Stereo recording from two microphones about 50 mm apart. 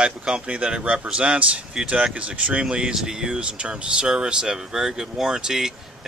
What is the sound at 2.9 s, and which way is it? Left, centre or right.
Speech, centre.